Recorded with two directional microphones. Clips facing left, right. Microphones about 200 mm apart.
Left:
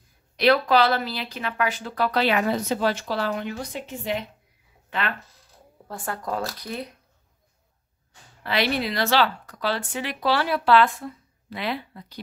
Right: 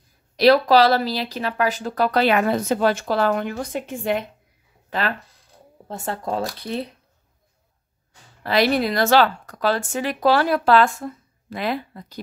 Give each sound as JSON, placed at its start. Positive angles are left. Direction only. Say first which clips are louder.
{"t": 0.4, "sound": "speech", "louder": "right 5 dB", "side_deg": -35}
{"t": 4.8, "sound": "a sound", "louder": "right 4 dB", "side_deg": -40}
{"t": 5.9, "sound": "speech", "louder": "right 3 dB", "side_deg": -25}
{"t": 8.5, "sound": "speech", "louder": "right 6 dB", "side_deg": -40}